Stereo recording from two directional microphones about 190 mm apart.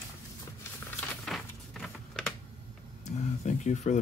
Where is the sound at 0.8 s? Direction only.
Centre (ahead or behind).